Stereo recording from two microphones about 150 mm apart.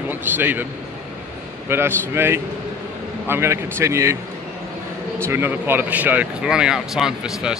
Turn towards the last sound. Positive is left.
turn(degrees=-5)  # may be behind; listen again after turning